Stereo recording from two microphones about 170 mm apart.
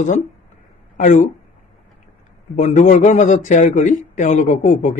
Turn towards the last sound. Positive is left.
turn(degrees=50)  # may be behind; listen again after turning